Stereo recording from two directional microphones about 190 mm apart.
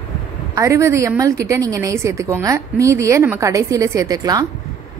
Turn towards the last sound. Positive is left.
turn(degrees=-20)  # may be behind; listen again after turning